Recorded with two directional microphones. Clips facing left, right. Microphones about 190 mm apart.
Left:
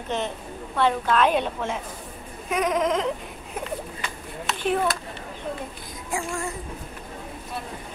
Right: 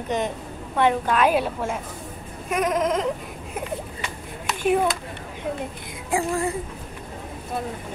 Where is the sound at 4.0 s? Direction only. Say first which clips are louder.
Right 1 dB; 15° right (ahead or behind).